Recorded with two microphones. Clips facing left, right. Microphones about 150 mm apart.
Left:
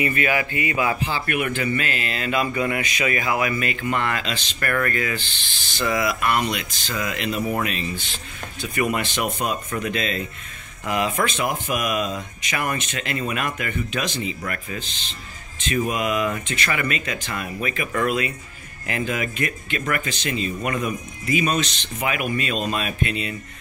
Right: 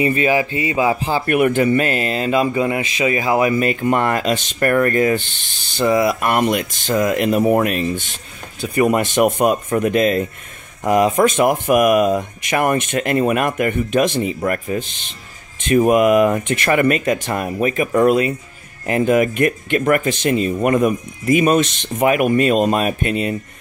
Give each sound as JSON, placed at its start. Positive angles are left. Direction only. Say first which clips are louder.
{"t": 0.0, "sound": "speech", "louder": "right 6 dB", "side_deg": -30}
{"t": 6.2, "sound": "speech", "louder": "right 6 dB", "side_deg": -50}
{"t": 8.6, "sound": "speech", "louder": "right 8 dB", "side_deg": -40}
{"t": 11.4, "sound": "speech", "louder": "right 11 dB", "side_deg": -55}